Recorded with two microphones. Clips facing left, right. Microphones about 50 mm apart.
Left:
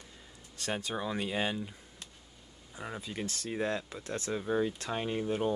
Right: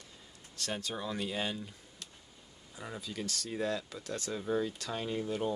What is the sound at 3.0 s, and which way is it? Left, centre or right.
Speech, left.